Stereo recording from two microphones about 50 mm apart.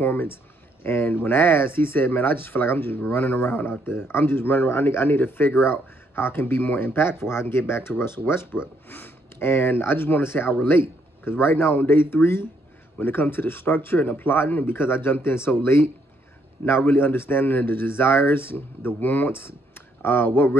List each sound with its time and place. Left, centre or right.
0.0 s speech: left